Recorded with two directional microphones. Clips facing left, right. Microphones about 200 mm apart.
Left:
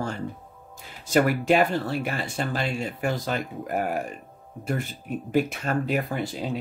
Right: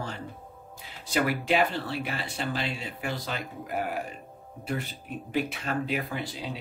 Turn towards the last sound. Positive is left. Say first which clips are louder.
# left 5 dB
turn(degrees=45)  # may be behind; listen again after turning